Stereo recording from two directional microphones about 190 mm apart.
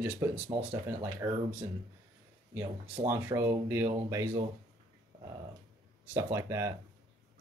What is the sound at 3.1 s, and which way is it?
Speech, 15° right (ahead or behind).